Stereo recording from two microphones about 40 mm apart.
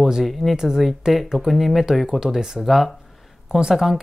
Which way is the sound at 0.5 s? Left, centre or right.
Centre.